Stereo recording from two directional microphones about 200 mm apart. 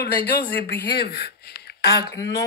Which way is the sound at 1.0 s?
55° left (ahead or behind).